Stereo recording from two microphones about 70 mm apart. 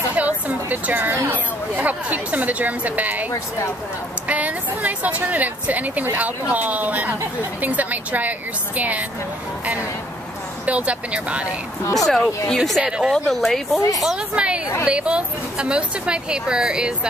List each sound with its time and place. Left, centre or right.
0.1 s chatter: right
1.3 s speech: right
4.3 s a woman's voice: right
10.6 s speech: centre
11.8 s speech: left
12.5 s speech: centre
12.8 s a woman's voice: centre
13.1 s speech: centre
13.7 s speech: left
14.0 s a woman's voice: centre